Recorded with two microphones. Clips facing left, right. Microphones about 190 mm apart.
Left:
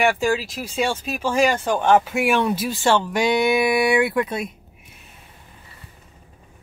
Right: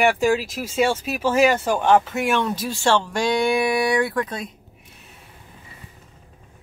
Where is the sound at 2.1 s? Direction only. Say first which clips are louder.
Left 2 dB; 10° left (ahead or behind).